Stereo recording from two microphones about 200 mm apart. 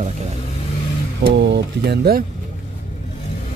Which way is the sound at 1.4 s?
60° right (ahead or behind).